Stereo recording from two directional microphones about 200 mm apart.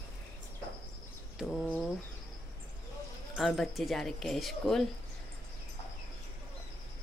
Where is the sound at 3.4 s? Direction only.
Centre (ahead or behind).